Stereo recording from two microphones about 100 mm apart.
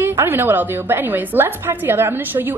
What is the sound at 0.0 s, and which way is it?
A woman's voice, 25° right (ahead or behind).